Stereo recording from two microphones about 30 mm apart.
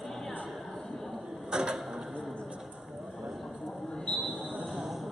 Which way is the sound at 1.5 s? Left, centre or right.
Right.